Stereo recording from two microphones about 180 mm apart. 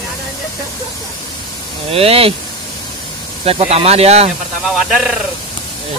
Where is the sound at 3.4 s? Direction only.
35° right (ahead or behind).